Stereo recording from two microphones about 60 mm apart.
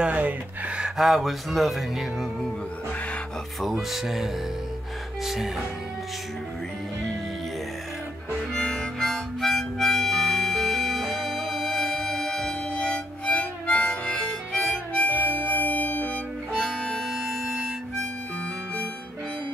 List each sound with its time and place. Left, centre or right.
0.0 s speech: right
0.9 s speech: centre
3.6 s speech: centre
8.5 s harmonica: centre; by 14.1 s left
14.1 s harmonica: centre
15.0 s harmonica: left
16.5 s music: centre